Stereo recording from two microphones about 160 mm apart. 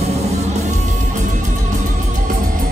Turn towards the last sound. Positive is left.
turn(degrees=-45)  # may be behind; listen again after turning